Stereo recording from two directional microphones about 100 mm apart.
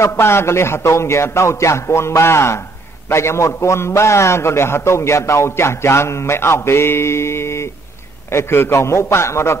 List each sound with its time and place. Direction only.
0.0 s a man's voice: 25° left (ahead or behind)